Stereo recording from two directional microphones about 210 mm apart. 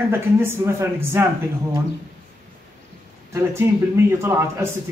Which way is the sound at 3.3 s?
10° right (ahead or behind).